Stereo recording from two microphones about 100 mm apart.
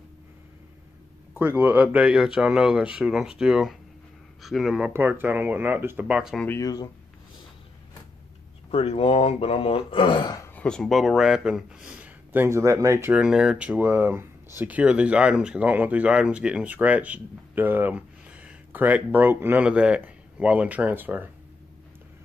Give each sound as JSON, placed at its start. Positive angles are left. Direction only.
{"t": 1.3, "sound": "speech", "side_deg": -20}
{"t": 4.9, "sound": "speech", "side_deg": -20}
{"t": 6.0, "sound": "speech", "side_deg": -10}
{"t": 6.6, "sound": "speech", "side_deg": 40}
{"t": 8.6, "sound": "speech", "side_deg": 85}
{"t": 10.5, "sound": "speech", "side_deg": 10}
{"t": 13.1, "sound": "speech", "side_deg": -10}
{"t": 13.8, "sound": "speech", "side_deg": -20}